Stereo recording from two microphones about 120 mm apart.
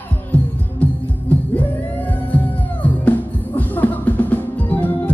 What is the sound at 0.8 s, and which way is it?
Music, 15° left (ahead or behind).